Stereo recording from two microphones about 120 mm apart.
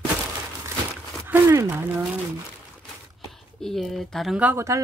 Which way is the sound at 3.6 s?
Centre (ahead or behind).